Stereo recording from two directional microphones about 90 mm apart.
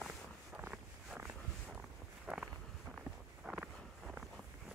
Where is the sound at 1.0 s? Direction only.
15° right (ahead or behind).